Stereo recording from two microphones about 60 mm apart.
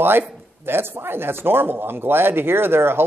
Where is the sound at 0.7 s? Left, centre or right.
Right.